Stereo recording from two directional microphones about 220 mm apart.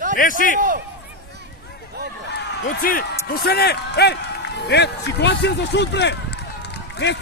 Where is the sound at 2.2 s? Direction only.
50° left (ahead or behind).